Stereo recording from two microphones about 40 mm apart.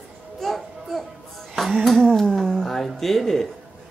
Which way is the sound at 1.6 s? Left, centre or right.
Centre.